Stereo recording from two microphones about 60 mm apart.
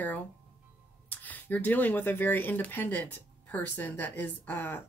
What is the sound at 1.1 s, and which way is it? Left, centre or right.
A woman's voice, left.